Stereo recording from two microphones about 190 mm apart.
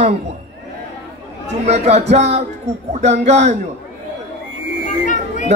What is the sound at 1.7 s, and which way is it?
A man's voice, 35° right (ahead or behind).